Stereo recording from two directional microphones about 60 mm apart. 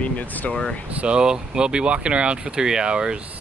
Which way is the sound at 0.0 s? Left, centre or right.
Left.